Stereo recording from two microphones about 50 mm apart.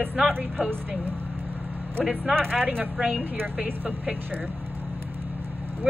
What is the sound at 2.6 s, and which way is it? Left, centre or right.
Speech, right.